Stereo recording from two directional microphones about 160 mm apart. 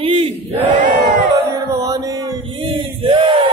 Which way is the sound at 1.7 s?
20° right (ahead or behind).